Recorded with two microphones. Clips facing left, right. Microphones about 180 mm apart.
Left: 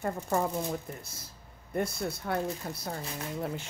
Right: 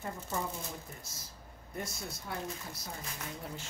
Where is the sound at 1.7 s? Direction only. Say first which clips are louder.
Left 10 dB; 60° left (ahead or behind).